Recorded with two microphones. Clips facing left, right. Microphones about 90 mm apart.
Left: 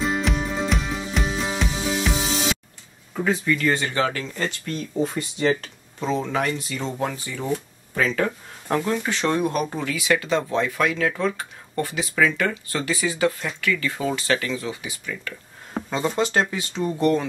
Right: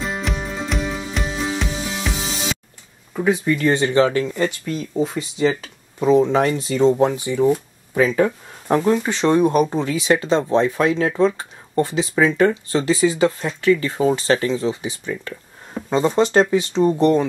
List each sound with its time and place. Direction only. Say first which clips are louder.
0.0 s music: left 2 dB; centre (ahead or behind)
3.4 s speech: right 4 dB; 25° right (ahead or behind)
4.3 s speech: right 6 dB; 10° right (ahead or behind)
4.7 s speech: even; centre (ahead or behind)
5.5 s speech: left 1 dB; 10° right (ahead or behind)
6.4 s speech: right 10 dB; 30° right (ahead or behind)
7.0 s speech: right 10 dB; 20° right (ahead or behind)